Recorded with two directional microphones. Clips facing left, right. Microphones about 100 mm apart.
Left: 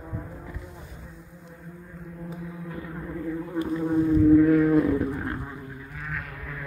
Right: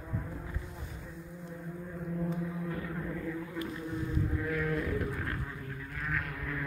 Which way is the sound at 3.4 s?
35° left (ahead or behind).